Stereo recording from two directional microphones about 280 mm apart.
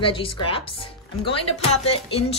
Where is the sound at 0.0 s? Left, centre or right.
Centre.